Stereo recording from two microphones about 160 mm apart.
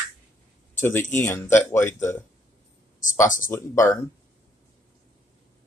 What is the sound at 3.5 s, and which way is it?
Speech, 15° left (ahead or behind).